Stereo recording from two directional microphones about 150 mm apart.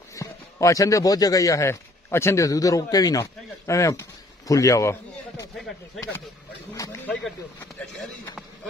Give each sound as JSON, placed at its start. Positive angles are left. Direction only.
{"t": 0.1, "sound": "a man's voice", "side_deg": 20}
{"t": 6.7, "sound": "a man's voice", "side_deg": 20}
{"t": 7.8, "sound": "speech", "side_deg": 0}